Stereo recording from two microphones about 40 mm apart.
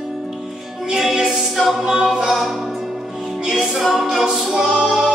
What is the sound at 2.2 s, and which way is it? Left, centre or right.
Music, centre.